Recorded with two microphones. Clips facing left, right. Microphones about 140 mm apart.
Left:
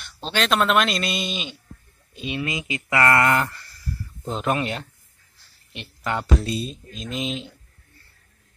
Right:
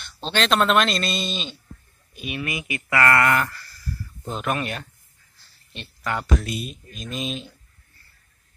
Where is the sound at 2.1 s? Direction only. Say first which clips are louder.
Left 2 dB; 25° left (ahead or behind).